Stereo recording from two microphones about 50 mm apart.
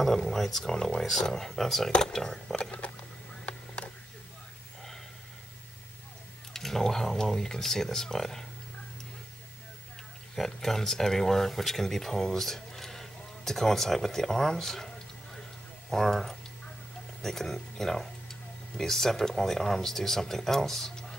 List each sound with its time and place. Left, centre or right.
0.0 s speech: centre
3.4 s a sound: left
6.5 s speech: centre
10.3 s speech: centre
15.9 s speech: centre